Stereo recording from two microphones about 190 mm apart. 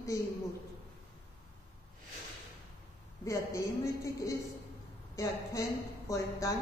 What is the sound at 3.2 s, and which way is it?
Speech, 15° left (ahead or behind).